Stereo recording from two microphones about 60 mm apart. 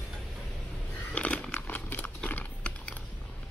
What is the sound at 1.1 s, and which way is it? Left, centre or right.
Computer keyboard, left.